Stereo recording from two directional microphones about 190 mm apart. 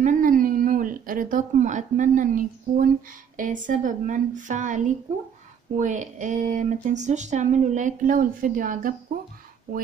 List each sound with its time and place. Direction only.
0.0 s speech: 45° right (ahead or behind)